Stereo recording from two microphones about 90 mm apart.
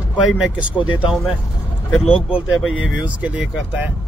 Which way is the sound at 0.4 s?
15° right (ahead or behind).